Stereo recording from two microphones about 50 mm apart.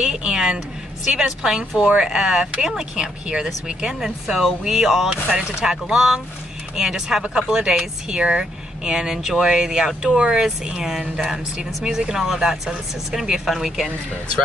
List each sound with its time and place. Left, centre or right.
0.0 s speech: centre
10.1 s speech: right
10.4 s speech: centre